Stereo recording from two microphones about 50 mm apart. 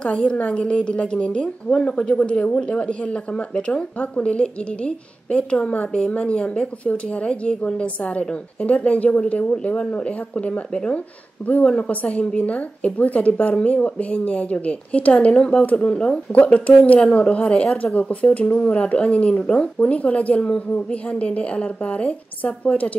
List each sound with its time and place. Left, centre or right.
0.0 s a woman's voice: left